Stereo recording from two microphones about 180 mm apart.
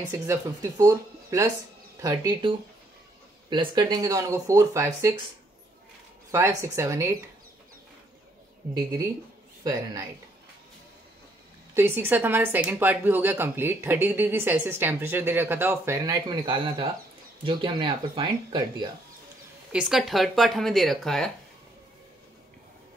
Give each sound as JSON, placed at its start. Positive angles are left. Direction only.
{"t": 0.1, "sound": "a woman's voice", "side_deg": -15}
{"t": 3.4, "sound": "a woman's voice", "side_deg": -25}
{"t": 6.3, "sound": "a woman's voice", "side_deg": -15}
{"t": 8.7, "sound": "a woman's voice", "side_deg": -20}
{"t": 11.7, "sound": "a woman's voice", "side_deg": -10}
{"t": 19.7, "sound": "speech", "side_deg": -5}